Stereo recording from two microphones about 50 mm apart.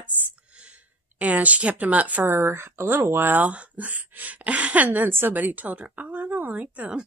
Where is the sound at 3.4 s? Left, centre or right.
Right.